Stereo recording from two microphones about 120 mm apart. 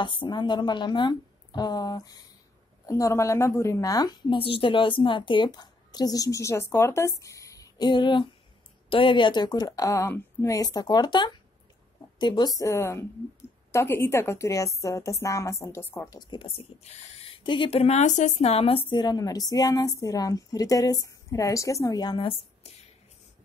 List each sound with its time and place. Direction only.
0.0 s a woman's voice: 40° left (ahead or behind); by 16.1 s 20° left (ahead or behind)
16.1 s speech: 40° left (ahead or behind); by 17.3 s 65° left (ahead or behind)
17.4 s a woman's voice: 45° left (ahead or behind)